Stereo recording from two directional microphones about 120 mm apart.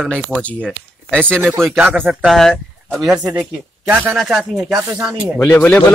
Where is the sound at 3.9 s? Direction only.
15° right (ahead or behind).